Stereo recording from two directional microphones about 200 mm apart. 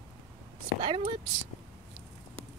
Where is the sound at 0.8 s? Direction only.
25° right (ahead or behind).